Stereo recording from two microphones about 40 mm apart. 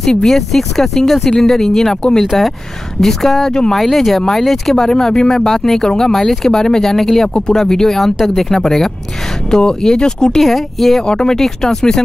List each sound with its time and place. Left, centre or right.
0.0 s speech: centre
3.7 s speech: centre
10.4 s speech: centre
11.1 s speech: centre